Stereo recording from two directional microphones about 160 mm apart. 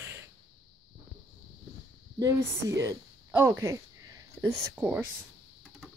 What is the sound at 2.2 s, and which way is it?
A woman's voice, 20° right (ahead or behind).